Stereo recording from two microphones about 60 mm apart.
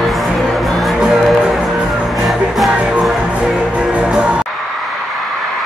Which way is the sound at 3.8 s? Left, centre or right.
Centre.